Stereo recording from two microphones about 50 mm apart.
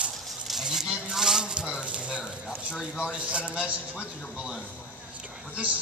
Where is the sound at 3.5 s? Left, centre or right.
Right.